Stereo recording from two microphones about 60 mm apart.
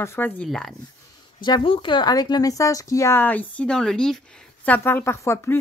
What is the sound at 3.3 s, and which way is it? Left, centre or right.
Speech, left.